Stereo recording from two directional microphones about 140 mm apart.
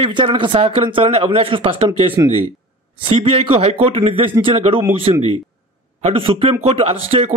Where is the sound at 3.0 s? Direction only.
40° right (ahead or behind).